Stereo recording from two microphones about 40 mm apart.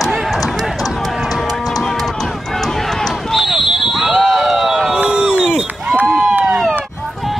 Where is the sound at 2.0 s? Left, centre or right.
Centre.